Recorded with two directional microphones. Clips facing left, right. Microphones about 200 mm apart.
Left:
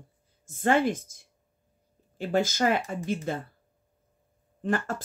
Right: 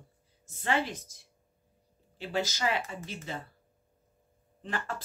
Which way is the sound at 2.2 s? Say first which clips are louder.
Left 7 dB; 50° left (ahead or behind).